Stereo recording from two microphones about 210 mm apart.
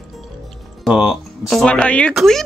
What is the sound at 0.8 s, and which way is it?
Speech, 5° right (ahead or behind).